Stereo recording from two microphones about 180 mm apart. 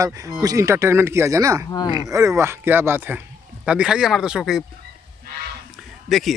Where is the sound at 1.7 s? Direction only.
20° left (ahead or behind).